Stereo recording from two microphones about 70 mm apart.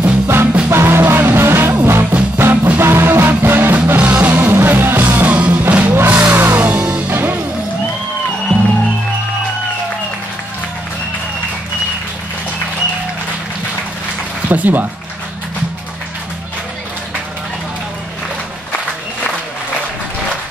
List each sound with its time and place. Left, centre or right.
0.3 s music: right
4.0 s music: centre
4.5 s music: right
5.3 s music: centre
6.7 s music: centre
7.1 s music: right
14.5 s speech: right